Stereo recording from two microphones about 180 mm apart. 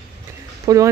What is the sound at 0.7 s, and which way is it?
Speech, 20° right (ahead or behind).